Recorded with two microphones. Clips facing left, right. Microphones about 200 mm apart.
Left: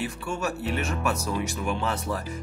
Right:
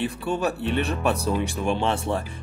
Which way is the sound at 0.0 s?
30° right (ahead or behind).